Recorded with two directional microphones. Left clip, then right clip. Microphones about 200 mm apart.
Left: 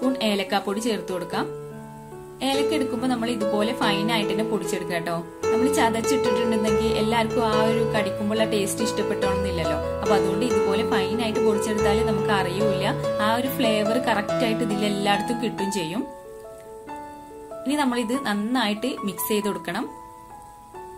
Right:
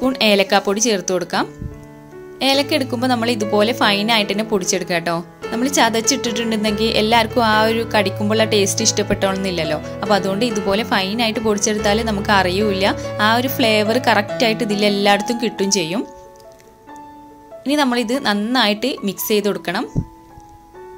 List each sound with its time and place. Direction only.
0.0 s speech: 30° right (ahead or behind)
17.6 s speech: 25° right (ahead or behind)